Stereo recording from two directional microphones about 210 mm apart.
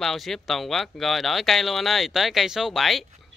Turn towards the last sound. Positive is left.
turn(degrees=0)  # may be behind; listen again after turning